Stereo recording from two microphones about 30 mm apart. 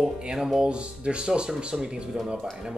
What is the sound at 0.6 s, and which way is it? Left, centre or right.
Speech, right.